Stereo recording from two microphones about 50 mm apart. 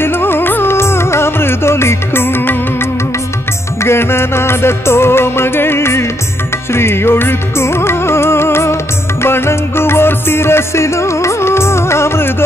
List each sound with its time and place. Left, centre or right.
0.0 s music: left